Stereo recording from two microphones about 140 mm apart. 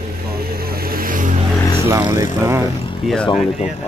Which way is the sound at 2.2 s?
20° right (ahead or behind).